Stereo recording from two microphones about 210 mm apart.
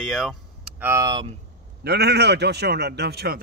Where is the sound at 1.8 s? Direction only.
50° right (ahead or behind).